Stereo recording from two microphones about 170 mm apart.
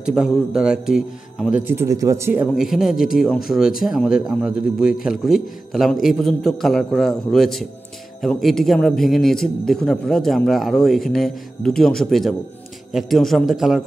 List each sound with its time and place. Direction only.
0.0 s a man's voice: 5° right (ahead or behind)
1.6 s speech: 15° right (ahead or behind)
2.4 s a man's voice: centre (ahead or behind)